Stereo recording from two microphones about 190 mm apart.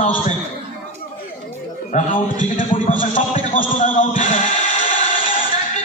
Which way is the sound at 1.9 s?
40° left (ahead or behind).